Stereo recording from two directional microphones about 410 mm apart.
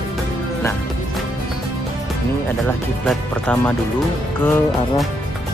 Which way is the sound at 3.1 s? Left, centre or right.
Centre.